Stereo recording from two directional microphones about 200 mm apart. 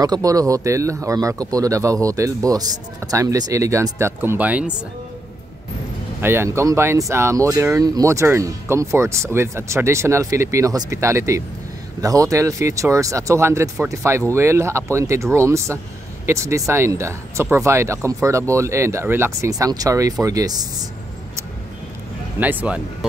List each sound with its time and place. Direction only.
0.0 s speech: 20° right (ahead or behind)
6.2 s speech: 10° right (ahead or behind)
22.4 s speech: 10° right (ahead or behind)